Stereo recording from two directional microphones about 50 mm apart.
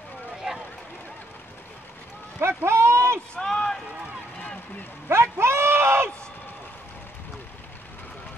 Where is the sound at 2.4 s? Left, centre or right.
Right.